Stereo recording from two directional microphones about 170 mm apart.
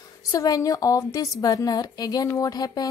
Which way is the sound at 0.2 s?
20° left (ahead or behind).